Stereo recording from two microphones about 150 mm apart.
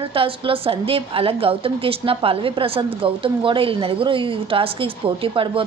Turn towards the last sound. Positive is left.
turn(degrees=-35)  # may be behind; listen again after turning